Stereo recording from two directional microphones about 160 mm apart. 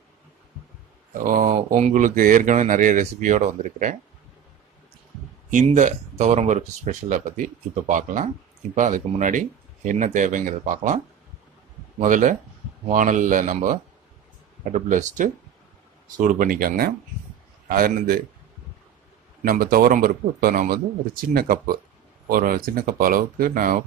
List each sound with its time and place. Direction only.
1.1 s speech: 60° right (ahead or behind)
5.5 s speech: 50° right (ahead or behind)
12.0 s speech: 55° right (ahead or behind)
19.4 s speech: 60° right (ahead or behind)